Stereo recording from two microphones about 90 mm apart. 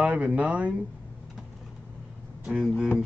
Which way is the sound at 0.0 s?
15° right (ahead or behind).